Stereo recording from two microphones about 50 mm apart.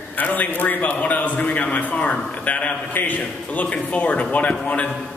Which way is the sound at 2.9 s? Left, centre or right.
Left.